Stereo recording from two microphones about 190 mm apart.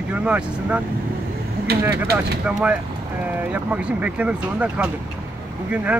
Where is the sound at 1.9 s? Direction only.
55° right (ahead or behind).